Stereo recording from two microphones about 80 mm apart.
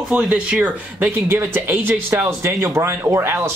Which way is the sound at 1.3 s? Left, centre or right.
Right.